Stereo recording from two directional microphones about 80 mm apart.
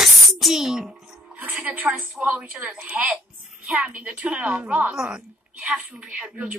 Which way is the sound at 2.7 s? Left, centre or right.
Centre.